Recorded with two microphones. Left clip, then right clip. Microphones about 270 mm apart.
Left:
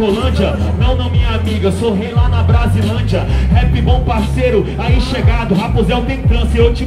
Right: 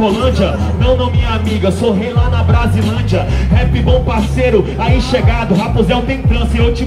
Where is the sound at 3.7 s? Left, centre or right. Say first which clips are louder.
Right 4 dB; centre.